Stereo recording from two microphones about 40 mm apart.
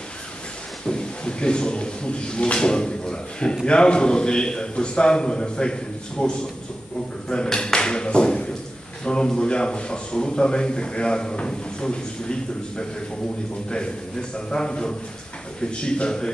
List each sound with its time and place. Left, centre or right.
0.8 s a man's voice: left
7.5 s a man's voice: centre
14.3 s a man's voice: left